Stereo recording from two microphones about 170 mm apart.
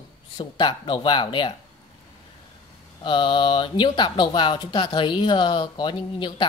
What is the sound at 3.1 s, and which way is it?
Speech, 30° left (ahead or behind).